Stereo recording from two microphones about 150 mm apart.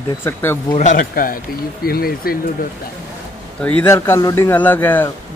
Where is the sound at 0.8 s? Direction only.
60° left (ahead or behind).